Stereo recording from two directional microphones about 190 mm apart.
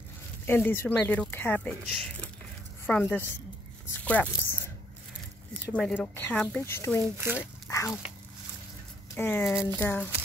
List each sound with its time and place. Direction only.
0.5 s speech: 10° left (ahead or behind)
9.1 s speech: 10° left (ahead or behind)